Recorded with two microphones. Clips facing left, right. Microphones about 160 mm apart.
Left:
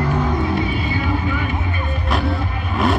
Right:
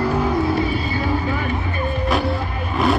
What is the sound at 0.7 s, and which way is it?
Vehicle, 35° right (ahead or behind).